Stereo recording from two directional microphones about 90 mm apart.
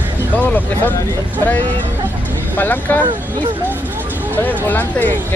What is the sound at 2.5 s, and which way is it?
Speech, 20° left (ahead or behind).